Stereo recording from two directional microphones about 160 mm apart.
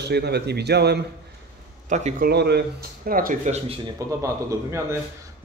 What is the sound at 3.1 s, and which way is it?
Speech, 60° right (ahead or behind).